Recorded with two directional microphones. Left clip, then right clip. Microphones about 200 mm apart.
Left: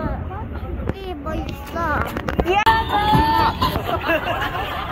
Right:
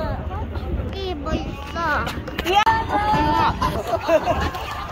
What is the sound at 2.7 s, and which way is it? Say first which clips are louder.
Child singing: left 2 dB; 10° right (ahead or behind).